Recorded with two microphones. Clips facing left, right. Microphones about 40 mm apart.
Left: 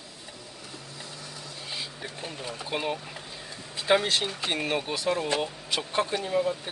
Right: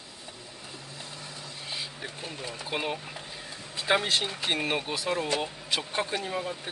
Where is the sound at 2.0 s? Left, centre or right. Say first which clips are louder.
Even; centre.